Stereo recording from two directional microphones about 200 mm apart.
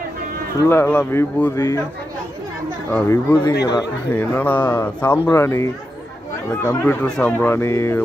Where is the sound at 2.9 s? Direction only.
15° left (ahead or behind).